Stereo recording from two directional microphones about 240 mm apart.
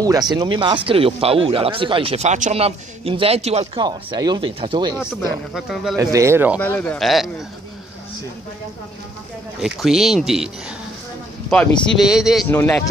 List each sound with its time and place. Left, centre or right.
0.0 s speech: centre
5.5 s speech: centre
5.9 s speech: centre
6.6 s speech: centre
9.8 s speech: centre
11.5 s speech: centre